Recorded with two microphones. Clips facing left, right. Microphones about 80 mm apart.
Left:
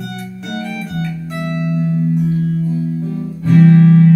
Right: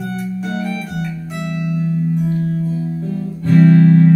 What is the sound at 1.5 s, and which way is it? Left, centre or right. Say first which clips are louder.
Music: left 2 dB; left.